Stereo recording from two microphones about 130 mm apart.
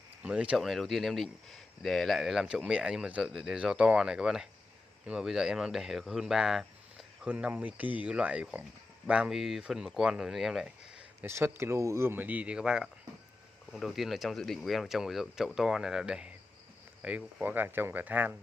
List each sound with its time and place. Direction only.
0.2 s speech: 10° right (ahead or behind)
11.1 s speech: 20° right (ahead or behind)